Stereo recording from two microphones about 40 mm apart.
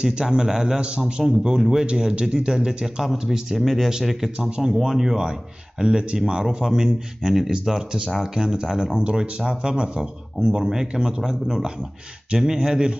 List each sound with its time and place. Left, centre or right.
0.0 s a man's voice: centre
3.5 s speech: centre
4.4 s speech: right
4.7 s a man's voice: centre
9.0 s a man's voice: right